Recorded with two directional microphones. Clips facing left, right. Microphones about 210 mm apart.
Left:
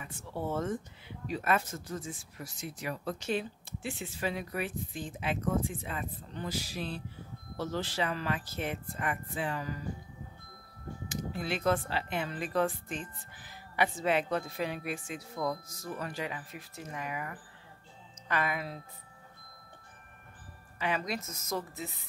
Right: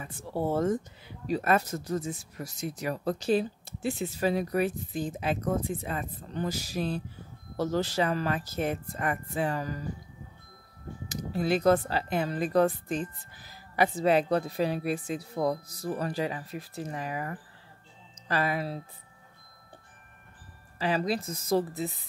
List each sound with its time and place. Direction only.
0.0 s speech: 35° right (ahead or behind)
11.1 s speech: 40° right (ahead or behind)
20.8 s speech: 35° right (ahead or behind)